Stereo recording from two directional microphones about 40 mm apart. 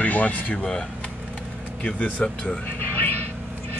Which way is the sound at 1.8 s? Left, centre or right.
Left.